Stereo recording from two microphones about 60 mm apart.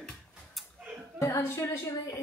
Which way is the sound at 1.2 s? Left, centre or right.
Left.